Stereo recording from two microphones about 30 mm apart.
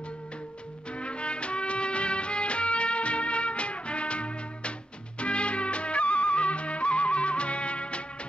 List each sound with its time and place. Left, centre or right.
0.9 s music: left